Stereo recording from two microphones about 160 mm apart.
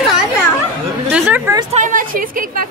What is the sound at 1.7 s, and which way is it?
Speech, 55° right (ahead or behind).